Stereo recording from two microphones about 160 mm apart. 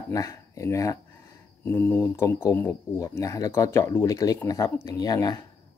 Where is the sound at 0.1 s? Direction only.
20° left (ahead or behind).